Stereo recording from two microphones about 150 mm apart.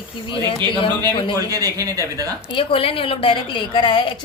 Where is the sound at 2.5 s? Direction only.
35° left (ahead or behind).